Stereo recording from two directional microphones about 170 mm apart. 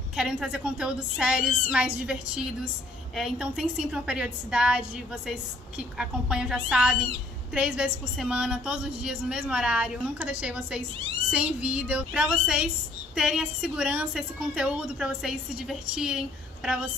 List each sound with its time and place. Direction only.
0.1 s a woman's voice: 5° right (ahead or behind)